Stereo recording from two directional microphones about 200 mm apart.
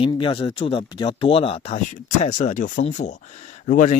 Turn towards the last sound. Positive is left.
turn(degrees=40)  # may be behind; listen again after turning